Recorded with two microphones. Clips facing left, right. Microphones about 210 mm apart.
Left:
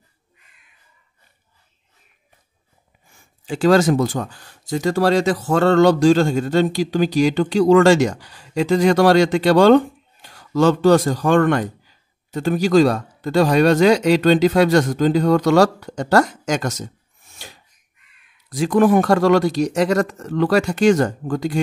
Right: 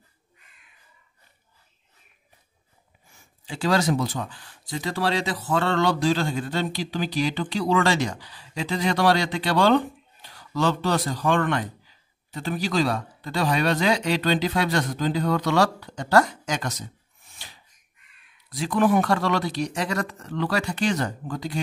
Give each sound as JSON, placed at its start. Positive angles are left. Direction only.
{"t": 3.4, "sound": "speech", "side_deg": 50}